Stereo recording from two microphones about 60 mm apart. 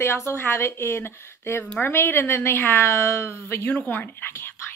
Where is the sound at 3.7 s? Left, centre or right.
Left.